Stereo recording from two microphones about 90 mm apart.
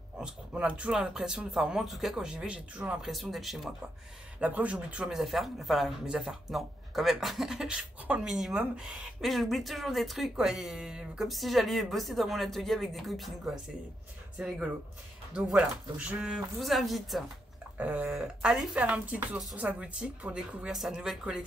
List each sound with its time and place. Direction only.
0.2 s speech: 10° right (ahead or behind)
3.1 s speech: centre (ahead or behind)
4.4 s speech: 15° right (ahead or behind); by 13.3 s centre (ahead or behind)
14.4 s speech: 10° right (ahead or behind)
16.5 s speech: centre (ahead or behind)
17.7 s speech: 15° right (ahead or behind)
18.1 s speech: 5° right (ahead or behind)